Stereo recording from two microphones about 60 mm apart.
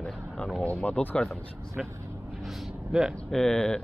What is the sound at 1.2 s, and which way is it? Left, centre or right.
Speech, centre.